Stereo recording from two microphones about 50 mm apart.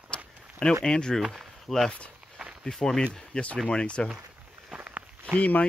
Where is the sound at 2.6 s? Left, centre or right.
Centre.